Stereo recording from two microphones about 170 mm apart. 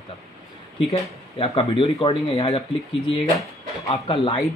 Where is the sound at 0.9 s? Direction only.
35° left (ahead or behind).